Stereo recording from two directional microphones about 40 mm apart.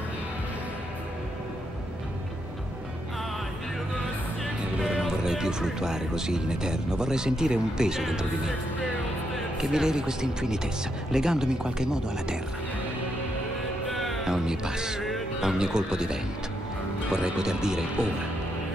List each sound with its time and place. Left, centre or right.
5.0 s speech: centre
9.6 s speech: centre
13.8 s music: centre
14.2 s speech: centre